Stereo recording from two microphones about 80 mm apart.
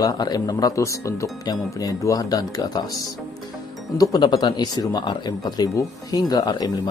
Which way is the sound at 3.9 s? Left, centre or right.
Left.